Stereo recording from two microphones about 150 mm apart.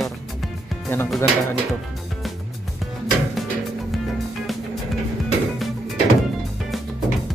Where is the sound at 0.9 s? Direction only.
15° left (ahead or behind).